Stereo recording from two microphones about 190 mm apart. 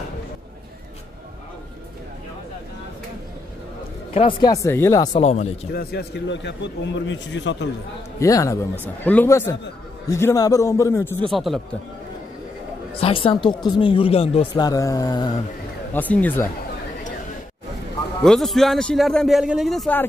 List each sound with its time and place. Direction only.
4.1 s speech: 30° left (ahead or behind)
5.2 s speech: 35° left (ahead or behind)
5.7 s a man's voice: 55° left (ahead or behind); by 7.5 s 70° left (ahead or behind)
8.2 s a man's voice: 15° left (ahead or behind)
11.2 s a man's voice: centre (ahead or behind)
13.0 s speech: 30° left (ahead or behind)
15.9 s a man's voice: 10° left (ahead or behind)
18.2 s a man's voice: centre (ahead or behind)